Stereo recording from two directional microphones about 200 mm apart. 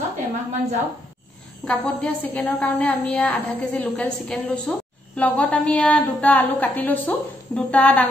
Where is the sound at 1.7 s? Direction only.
5° left (ahead or behind).